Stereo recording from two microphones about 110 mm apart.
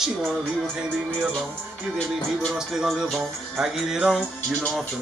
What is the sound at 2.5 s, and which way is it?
Music, 5° right (ahead or behind).